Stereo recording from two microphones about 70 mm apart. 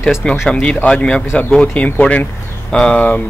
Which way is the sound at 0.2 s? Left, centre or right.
Centre.